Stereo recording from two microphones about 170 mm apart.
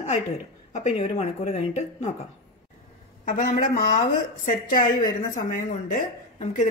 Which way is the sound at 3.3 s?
50° left (ahead or behind).